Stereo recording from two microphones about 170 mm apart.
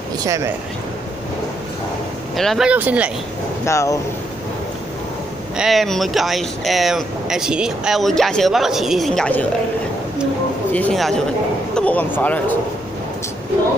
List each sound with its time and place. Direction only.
2.3 s speech: centre (ahead or behind)
3.6 s speech: 15° left (ahead or behind)
5.6 s speech: centre (ahead or behind)
10.7 s speech: 5° left (ahead or behind)